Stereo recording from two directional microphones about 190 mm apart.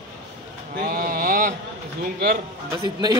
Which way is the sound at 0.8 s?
55° right (ahead or behind).